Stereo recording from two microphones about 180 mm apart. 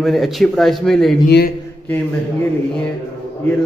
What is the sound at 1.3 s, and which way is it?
Speech, 70° left (ahead or behind).